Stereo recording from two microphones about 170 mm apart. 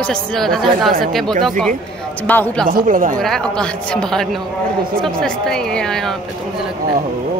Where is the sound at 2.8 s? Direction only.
50° right (ahead or behind).